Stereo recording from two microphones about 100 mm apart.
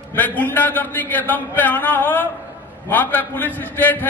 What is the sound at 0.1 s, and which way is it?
A man's voice, 15° left (ahead or behind).